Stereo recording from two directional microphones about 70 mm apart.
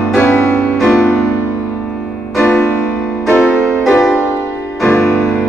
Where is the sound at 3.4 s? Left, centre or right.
Centre.